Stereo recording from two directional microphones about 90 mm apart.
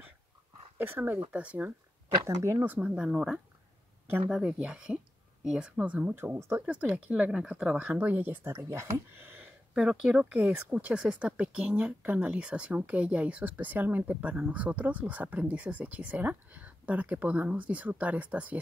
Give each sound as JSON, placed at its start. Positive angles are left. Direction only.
{"t": 0.7, "sound": "speech", "side_deg": -20}
{"t": 2.2, "sound": "speech", "side_deg": -35}
{"t": 2.6, "sound": "speech", "side_deg": -15}
{"t": 6.6, "sound": "speech", "side_deg": -15}
{"t": 9.8, "sound": "speech", "side_deg": -5}